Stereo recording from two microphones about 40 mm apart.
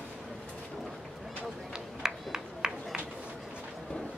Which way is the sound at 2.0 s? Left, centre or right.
Centre.